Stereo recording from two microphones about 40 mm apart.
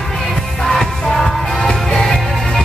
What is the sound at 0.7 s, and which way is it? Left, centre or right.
Music, centre.